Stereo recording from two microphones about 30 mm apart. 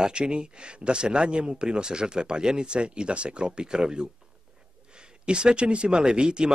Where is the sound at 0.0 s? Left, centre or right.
Right.